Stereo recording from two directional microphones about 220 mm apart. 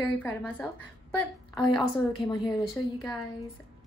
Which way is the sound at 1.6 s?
20° left (ahead or behind).